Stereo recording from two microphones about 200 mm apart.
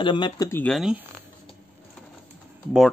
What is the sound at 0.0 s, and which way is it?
Speech, 25° left (ahead or behind).